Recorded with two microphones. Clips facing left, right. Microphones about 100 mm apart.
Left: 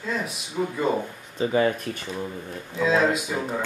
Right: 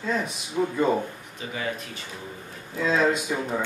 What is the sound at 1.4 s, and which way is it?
Speech, 40° left (ahead or behind).